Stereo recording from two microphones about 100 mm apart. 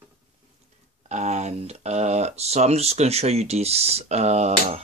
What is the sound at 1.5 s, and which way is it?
Speech, 90° right.